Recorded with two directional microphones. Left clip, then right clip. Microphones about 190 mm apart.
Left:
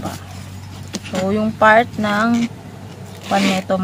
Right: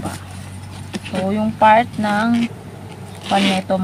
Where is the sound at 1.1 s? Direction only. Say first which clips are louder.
Left 2 dB; 20° left (ahead or behind).